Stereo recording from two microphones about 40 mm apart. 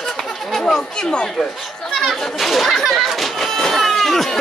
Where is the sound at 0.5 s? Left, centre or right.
Centre.